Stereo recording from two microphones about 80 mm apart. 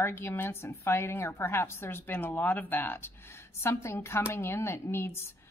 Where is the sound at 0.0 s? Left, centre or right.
Left.